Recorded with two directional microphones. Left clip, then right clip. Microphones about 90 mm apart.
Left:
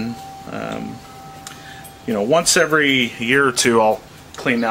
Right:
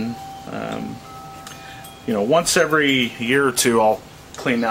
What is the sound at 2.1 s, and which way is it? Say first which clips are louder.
Speech: left 1 dB; 15° left (ahead or behind).